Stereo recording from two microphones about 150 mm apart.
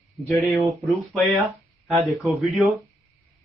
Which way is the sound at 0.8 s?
Centre (ahead or behind).